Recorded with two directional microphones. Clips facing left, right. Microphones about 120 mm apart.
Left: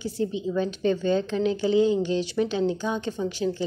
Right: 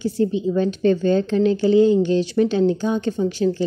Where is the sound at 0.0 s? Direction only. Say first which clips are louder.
Right 7 dB; 45° right (ahead or behind).